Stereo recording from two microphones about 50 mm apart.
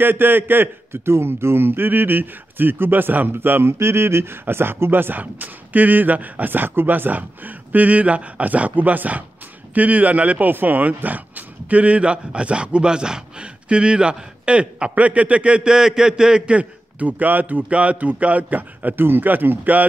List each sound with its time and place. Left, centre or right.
0.0 s a man's voice: right